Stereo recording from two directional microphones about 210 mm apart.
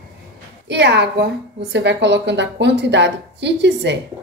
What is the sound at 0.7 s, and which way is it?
A woman's voice, 55° right (ahead or behind).